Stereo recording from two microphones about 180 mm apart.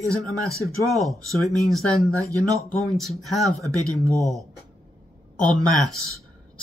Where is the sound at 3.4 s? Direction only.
20° right (ahead or behind).